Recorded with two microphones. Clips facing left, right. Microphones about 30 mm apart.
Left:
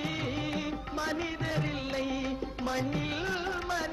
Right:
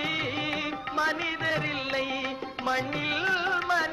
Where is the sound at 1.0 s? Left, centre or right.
Right.